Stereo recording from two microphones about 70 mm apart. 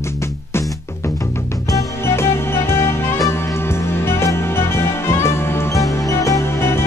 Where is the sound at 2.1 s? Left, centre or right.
Left.